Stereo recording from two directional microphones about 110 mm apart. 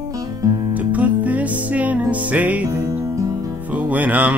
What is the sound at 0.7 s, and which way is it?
Music, 15° right (ahead or behind).